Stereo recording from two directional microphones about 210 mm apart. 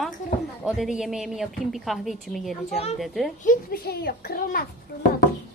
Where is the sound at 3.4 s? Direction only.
45° left (ahead or behind).